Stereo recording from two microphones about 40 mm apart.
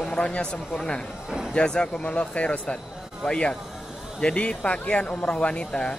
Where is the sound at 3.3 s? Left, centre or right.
Left.